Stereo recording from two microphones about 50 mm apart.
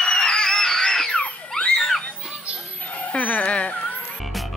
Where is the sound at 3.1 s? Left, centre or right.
Left.